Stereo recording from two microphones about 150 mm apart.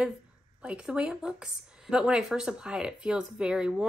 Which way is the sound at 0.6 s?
5° right (ahead or behind).